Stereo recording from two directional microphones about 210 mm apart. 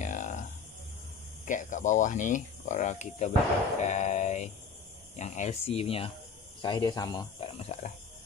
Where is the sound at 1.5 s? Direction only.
35° left (ahead or behind).